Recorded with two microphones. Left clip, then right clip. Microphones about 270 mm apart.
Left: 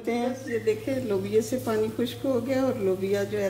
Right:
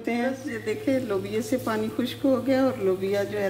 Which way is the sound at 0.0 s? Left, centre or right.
Right.